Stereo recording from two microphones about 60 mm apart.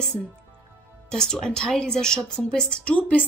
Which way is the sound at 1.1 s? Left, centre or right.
Centre.